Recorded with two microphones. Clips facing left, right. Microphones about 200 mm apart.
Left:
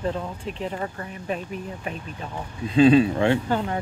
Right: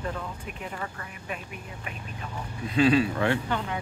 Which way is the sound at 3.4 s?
40° left (ahead or behind).